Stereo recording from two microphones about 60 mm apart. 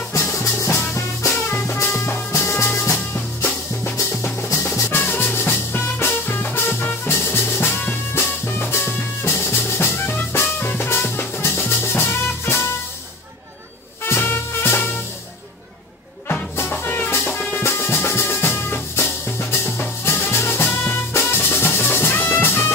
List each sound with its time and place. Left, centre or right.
0.2 s music: left
4.1 s music: left
14.0 s swing music: left
16.7 s music: left
17.6 s music: left